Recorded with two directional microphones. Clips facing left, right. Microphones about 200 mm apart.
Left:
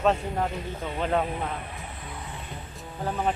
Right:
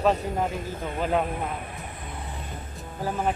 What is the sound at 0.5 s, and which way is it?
Speech, 50° right (ahead or behind).